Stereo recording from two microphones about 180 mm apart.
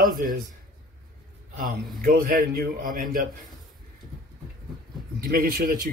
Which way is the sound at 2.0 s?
55° right (ahead or behind).